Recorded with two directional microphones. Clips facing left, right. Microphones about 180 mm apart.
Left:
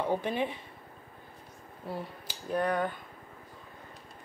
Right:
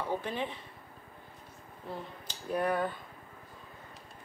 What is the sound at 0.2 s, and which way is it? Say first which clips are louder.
Speech: left 4 dB; 15° left (ahead or behind).